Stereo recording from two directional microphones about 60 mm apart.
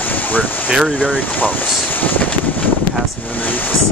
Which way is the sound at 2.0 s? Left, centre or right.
Left.